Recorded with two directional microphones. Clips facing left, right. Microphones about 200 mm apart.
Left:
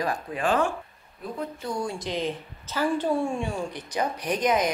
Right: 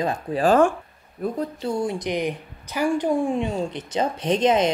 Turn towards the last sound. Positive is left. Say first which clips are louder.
# right 5 dB
turn(degrees=-25)  # may be behind; listen again after turning